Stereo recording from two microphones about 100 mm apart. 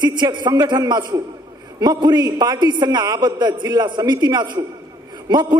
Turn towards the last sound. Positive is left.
turn(degrees=-45)  # may be behind; listen again after turning